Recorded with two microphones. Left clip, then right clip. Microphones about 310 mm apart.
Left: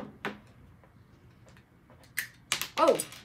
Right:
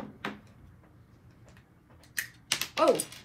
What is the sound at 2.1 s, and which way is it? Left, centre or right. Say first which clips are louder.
Typewriter: right 1 dB; centre.